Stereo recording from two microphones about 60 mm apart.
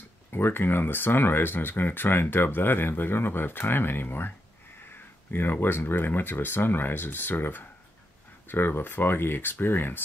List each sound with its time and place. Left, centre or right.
0.3 s speech: left